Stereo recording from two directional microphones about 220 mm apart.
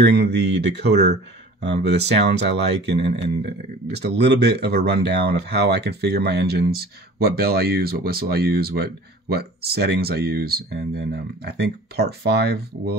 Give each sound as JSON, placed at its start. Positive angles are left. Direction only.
{"t": 0.0, "sound": "speech", "side_deg": -50}